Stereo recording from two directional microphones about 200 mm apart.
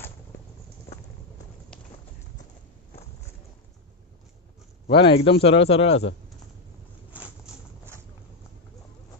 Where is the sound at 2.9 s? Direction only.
30° left (ahead or behind).